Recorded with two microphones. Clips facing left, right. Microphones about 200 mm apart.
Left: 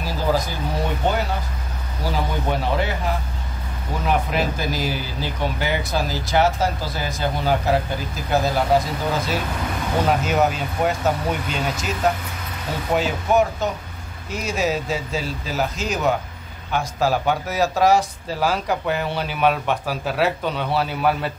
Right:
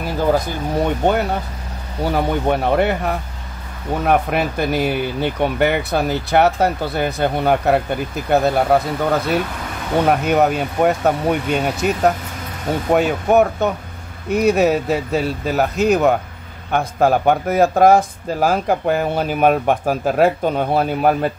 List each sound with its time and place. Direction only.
2.0 s speech: 60° right (ahead or behind)
12.9 s speech: 60° right (ahead or behind)